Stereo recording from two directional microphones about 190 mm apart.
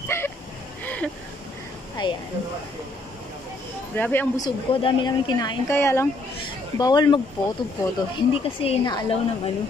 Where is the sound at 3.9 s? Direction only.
10° left (ahead or behind).